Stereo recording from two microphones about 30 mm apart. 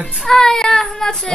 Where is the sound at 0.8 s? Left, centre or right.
Centre.